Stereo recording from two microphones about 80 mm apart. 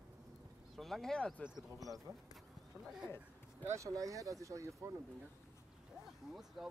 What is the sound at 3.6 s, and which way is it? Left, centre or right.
Speech, right.